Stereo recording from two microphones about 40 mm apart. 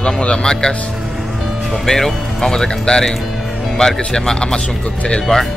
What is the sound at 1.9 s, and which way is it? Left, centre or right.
Speech, centre.